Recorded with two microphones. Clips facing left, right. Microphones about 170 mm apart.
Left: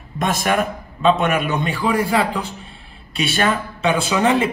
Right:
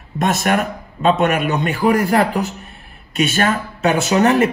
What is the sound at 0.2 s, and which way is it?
A woman's voice, 50° right (ahead or behind).